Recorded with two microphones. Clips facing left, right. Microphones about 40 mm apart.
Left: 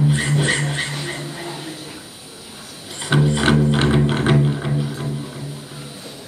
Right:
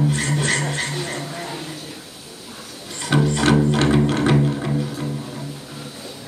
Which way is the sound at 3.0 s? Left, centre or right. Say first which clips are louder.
Left 1 dB; centre.